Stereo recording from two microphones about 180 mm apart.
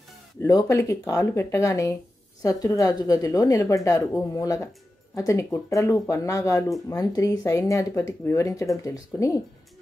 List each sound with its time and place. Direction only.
0.4 s a woman's voice: 20° left (ahead or behind)